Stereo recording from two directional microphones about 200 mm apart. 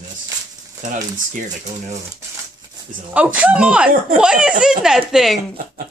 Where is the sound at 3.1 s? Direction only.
5° right (ahead or behind).